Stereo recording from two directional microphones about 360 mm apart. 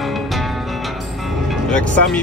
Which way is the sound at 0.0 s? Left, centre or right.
Centre.